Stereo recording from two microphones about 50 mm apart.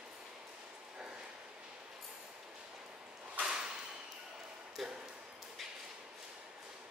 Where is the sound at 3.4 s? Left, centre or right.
Centre.